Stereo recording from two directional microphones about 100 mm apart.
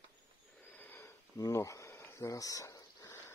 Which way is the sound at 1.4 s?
35° left (ahead or behind).